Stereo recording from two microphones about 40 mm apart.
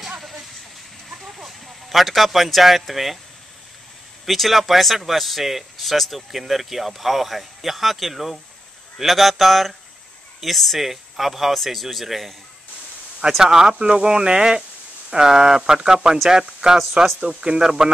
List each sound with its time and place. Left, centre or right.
1.1 s a sound: centre
2.8 s speech: centre
4.3 s speech: centre
13.4 s speech: centre
13.7 s speech: right
16.7 s speech: centre
17.2 s speech: right